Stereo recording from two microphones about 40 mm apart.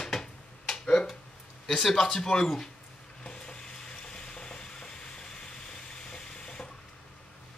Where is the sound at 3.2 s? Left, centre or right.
Left.